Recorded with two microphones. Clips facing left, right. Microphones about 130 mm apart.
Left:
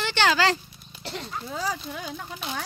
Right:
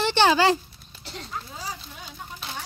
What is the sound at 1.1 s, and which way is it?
Speech, 80° left.